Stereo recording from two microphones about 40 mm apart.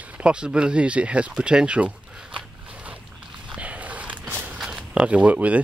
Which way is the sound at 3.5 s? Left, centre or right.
Right.